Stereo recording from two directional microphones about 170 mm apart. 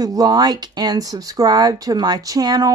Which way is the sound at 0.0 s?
20° right (ahead or behind).